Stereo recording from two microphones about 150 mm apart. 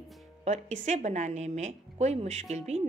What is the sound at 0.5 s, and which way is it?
A woman's voice, 50° right (ahead or behind).